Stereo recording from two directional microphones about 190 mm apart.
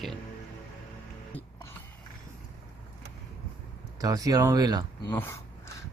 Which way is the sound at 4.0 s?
20° right (ahead or behind).